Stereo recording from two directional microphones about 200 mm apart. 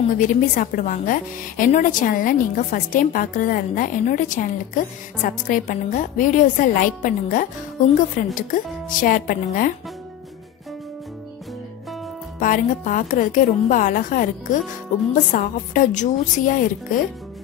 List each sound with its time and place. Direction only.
0.1 s a woman's voice: 40° left (ahead or behind)
12.4 s a woman's voice: 40° left (ahead or behind)